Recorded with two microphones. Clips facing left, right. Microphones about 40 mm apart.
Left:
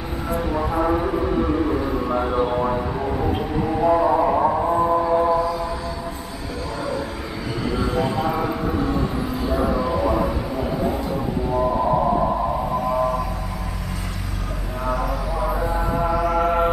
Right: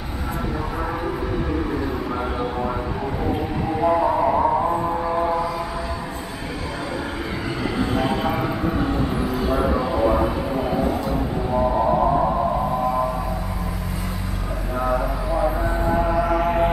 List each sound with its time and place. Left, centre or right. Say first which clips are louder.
0.7 s vehicle: left 8 dB; centre
3.7 s vehicle: left 1 dB; centre
4.7 s music: left 4 dB; centre
5.0 s music: left 3 dB; centre
7.9 s a sound: even; centre
11.6 s whale vocalization: right 1 dB; centre
15.3 s music: right 3 dB; right
15.8 s music: right 3 dB; centre